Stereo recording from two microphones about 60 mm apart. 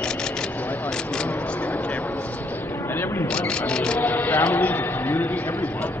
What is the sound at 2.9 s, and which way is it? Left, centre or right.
Single-lens reflex camera, left.